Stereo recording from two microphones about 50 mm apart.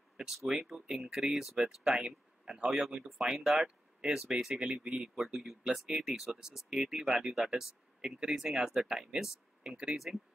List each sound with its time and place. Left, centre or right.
0.4 s speech: centre; by 4.8 s right
4.8 s speech: centre
9.6 s speech: centre
9.9 s speech: centre